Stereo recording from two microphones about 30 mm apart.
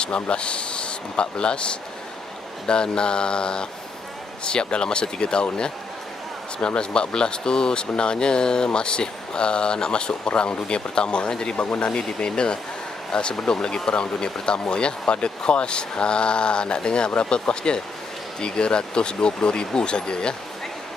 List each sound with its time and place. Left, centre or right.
0.0 s speech: left
2.6 s speech: left
11.2 s speech: left
11.5 s speech: left
12.2 s speech: left